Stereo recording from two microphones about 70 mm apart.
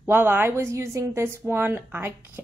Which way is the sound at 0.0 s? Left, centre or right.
Right.